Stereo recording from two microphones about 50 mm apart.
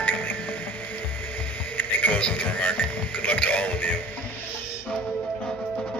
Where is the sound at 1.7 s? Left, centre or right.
Left.